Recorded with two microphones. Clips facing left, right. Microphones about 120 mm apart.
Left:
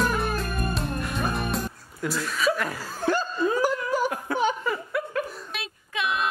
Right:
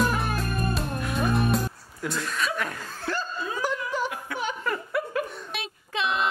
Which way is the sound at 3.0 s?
15° left (ahead or behind).